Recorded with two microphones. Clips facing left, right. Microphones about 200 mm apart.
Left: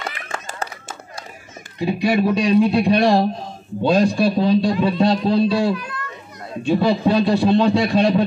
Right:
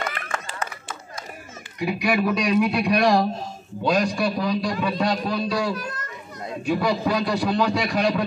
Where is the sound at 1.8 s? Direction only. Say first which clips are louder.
Left 4 dB; 25° left (ahead or behind).